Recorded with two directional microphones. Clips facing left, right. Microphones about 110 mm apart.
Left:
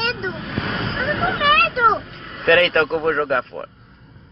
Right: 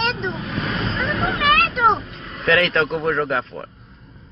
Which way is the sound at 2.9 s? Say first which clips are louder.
Left 2 dB; 35° left (ahead or behind).